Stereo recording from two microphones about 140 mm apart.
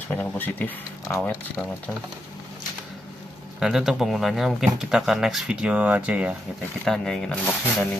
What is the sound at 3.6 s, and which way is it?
Speech, 5° right (ahead or behind).